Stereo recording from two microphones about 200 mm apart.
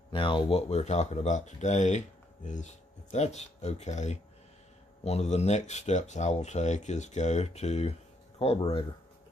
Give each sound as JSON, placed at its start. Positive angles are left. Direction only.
{"t": 0.1, "sound": "speech", "side_deg": 25}